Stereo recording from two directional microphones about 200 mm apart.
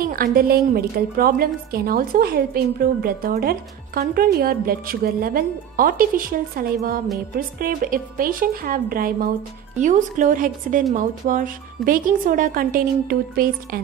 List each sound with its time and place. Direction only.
0.0 s a woman's voice: 45° right (ahead or behind)